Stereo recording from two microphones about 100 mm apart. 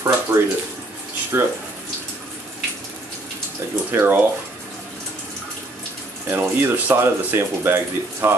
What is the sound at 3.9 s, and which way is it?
Speech, 25° right (ahead or behind).